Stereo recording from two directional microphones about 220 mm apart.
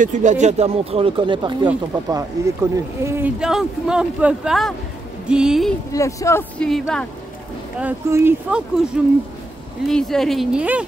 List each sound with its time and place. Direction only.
0.0 s speech: 35° right (ahead or behind); by 5.8 s centre (ahead or behind)
5.9 s speech: 15° left (ahead or behind)
7.8 s speech: 10° right (ahead or behind)
9.8 s speech: centre (ahead or behind)